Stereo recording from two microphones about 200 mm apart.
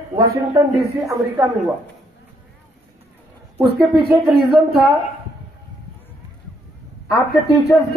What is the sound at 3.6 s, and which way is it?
Speech, 50° right (ahead or behind).